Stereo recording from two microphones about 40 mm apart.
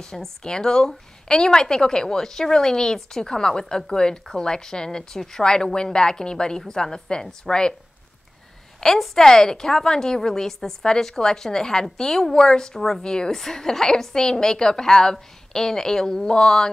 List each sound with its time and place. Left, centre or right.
0.0 s a woman's voice: centre
8.8 s a woman's voice: centre